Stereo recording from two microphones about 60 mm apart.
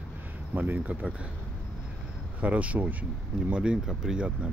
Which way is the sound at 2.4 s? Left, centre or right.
Right.